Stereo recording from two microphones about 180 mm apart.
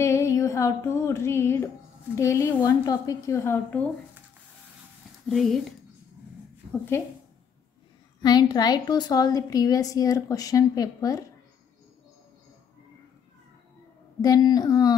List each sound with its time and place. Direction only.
0.0 s music: 15° left (ahead or behind)
2.1 s a woman's voice: 15° left (ahead or behind)
5.2 s speech: centre (ahead or behind)
6.9 s a woman's voice: 15° left (ahead or behind)
8.2 s a woman's voice: 20° left (ahead or behind)
14.2 s a woman's voice: 20° left (ahead or behind)